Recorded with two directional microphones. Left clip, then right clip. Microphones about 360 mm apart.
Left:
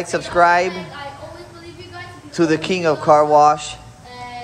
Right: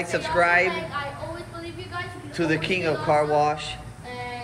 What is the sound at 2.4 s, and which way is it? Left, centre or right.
Speech, centre.